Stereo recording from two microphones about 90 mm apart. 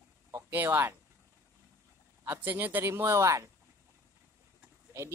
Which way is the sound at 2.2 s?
20° right (ahead or behind).